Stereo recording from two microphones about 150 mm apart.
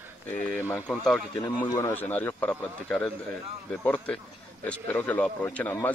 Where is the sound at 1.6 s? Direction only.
20° left (ahead or behind).